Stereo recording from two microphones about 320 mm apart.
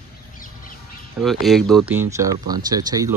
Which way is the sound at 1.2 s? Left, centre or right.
Centre.